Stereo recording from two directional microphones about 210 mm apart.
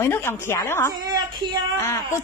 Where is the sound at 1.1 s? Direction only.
20° right (ahead or behind).